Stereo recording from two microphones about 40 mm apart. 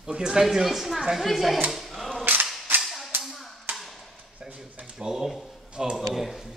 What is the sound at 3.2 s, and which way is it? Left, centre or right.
Clapping, centre.